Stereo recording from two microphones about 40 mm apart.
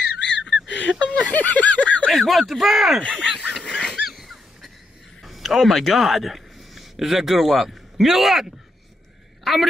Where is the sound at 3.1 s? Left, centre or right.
Right.